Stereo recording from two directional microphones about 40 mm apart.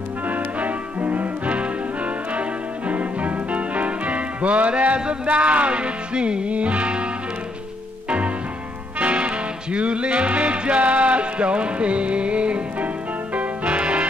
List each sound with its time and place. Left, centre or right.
0.3 s music: right
2.9 s music: right
9.0 s music: right